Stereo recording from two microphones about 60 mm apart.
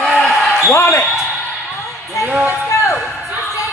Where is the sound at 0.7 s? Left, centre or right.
Left.